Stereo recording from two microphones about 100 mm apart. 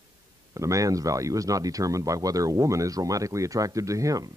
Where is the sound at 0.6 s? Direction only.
35° right (ahead or behind).